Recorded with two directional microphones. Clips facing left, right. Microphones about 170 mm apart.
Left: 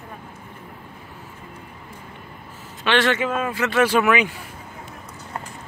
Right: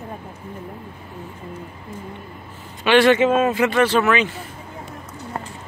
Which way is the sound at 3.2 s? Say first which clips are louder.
Right 7 dB; 25° right (ahead or behind).